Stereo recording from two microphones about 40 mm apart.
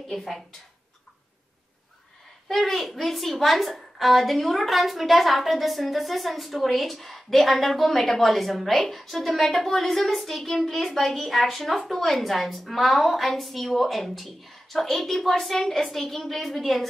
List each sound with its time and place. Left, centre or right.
0.1 s a woman's voice: centre
2.4 s a woman's voice: centre